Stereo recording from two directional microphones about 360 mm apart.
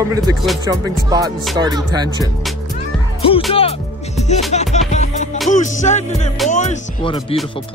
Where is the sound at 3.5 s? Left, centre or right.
Centre.